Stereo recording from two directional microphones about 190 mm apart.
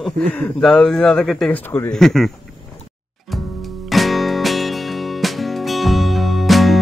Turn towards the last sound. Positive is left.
turn(degrees=0)  # may be behind; listen again after turning